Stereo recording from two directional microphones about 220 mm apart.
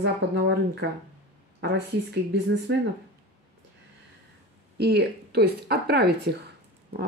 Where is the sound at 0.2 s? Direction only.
50° right (ahead or behind).